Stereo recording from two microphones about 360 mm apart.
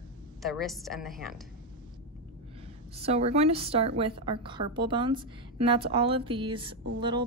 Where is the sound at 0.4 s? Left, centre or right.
Centre.